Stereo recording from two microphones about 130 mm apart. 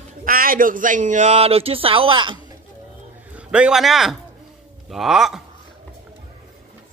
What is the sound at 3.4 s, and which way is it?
A man's voice, 10° right (ahead or behind).